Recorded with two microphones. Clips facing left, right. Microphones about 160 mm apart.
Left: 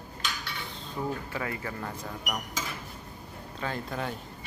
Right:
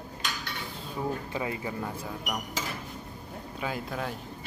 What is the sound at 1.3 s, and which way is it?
Speech, 20° right (ahead or behind).